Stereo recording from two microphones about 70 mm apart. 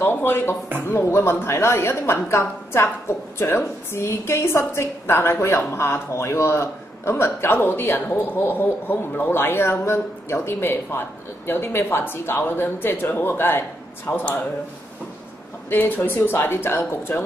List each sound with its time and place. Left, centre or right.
0.0 s a man's voice: left
15.7 s a man's voice: left